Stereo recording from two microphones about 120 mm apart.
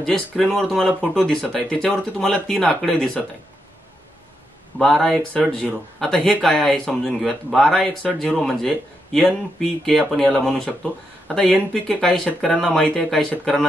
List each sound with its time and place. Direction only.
0.0 s speech: 5° left (ahead or behind)
4.7 s speech: 5° left (ahead or behind)